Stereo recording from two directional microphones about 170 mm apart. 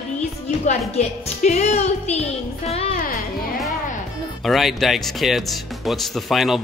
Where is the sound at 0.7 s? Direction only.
40° left (ahead or behind).